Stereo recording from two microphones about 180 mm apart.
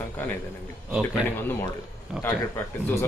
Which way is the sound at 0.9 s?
5° right (ahead or behind).